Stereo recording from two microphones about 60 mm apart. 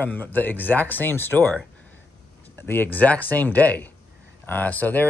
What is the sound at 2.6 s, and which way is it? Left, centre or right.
Speech, left.